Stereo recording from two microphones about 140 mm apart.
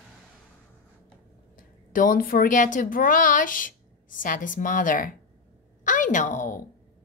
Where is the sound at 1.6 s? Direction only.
75° left (ahead or behind).